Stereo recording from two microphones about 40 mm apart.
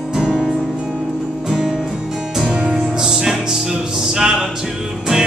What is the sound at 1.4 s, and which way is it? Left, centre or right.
Music, centre.